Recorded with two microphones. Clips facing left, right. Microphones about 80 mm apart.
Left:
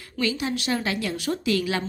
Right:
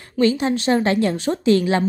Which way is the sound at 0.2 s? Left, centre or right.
Right.